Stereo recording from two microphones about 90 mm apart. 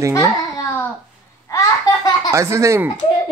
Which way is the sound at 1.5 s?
40° left (ahead or behind).